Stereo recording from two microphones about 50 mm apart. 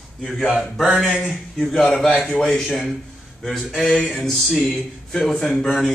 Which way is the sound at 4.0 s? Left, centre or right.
Centre.